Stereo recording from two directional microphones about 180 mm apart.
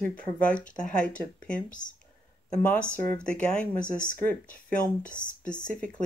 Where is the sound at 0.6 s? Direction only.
45° left (ahead or behind).